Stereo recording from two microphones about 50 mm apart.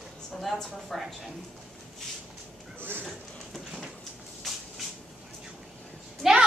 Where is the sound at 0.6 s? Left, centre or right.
Centre.